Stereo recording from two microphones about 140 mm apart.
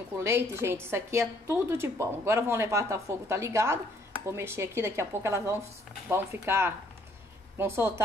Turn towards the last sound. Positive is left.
turn(degrees=-15)  # may be behind; listen again after turning